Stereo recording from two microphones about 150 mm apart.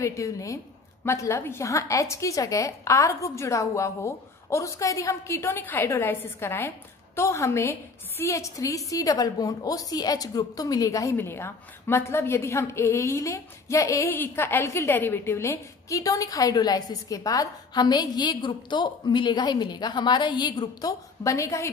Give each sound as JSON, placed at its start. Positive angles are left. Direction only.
{"t": 0.0, "sound": "a woman's voice", "side_deg": 20}